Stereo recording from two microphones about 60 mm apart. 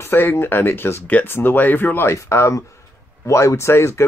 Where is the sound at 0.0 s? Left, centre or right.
Left.